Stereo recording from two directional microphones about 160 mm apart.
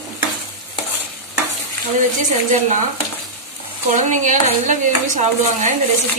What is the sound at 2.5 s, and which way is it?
Speech, 50° right (ahead or behind).